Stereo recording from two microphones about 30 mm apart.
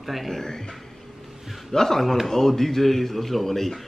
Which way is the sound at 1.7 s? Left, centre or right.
Centre.